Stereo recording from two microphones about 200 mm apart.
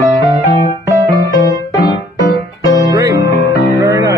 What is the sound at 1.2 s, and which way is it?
Music, 15° left (ahead or behind).